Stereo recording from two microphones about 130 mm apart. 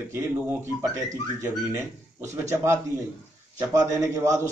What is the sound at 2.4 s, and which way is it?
A man's voice, 20° right (ahead or behind).